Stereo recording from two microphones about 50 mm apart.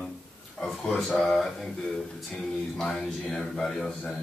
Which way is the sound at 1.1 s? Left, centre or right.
Left.